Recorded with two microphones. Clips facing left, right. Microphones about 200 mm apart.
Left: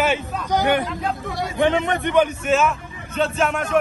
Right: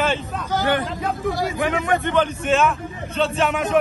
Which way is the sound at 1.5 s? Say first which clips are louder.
Left 2 dB; 25° left (ahead or behind).